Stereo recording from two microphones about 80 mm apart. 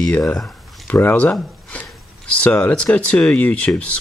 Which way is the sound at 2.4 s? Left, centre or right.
Centre.